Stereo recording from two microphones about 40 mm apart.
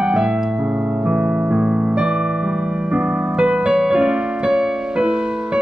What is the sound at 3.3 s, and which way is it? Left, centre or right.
Music, right.